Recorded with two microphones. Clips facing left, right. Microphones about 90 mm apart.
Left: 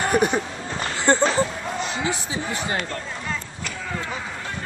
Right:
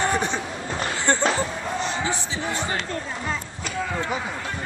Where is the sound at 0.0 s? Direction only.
15° left (ahead or behind).